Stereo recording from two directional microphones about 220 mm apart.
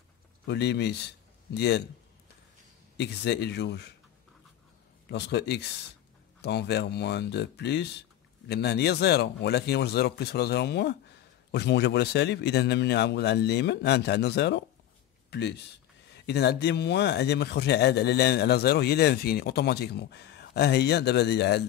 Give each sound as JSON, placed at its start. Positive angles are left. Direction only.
{"t": 0.5, "sound": "speech", "side_deg": 50}
{"t": 3.0, "sound": "speech", "side_deg": 50}
{"t": 5.0, "sound": "speech", "side_deg": 50}